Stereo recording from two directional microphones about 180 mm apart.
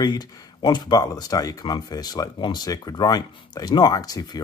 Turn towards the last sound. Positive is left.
turn(degrees=20)  # may be behind; listen again after turning